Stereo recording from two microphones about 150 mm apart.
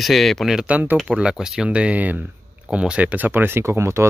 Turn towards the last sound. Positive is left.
turn(degrees=-15)  # may be behind; listen again after turning